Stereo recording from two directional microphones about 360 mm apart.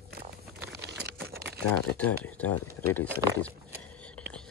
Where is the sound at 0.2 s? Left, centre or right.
Right.